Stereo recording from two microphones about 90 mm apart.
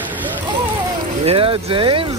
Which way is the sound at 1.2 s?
85° right.